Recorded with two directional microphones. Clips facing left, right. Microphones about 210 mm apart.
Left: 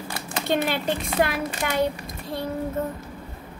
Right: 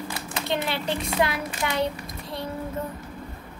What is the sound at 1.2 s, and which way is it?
Speech, 55° left (ahead or behind).